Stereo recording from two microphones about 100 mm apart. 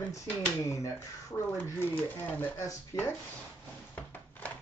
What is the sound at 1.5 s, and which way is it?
Speech, 20° left (ahead or behind).